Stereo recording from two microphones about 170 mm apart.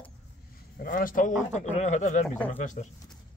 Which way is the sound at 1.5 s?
45° left (ahead or behind).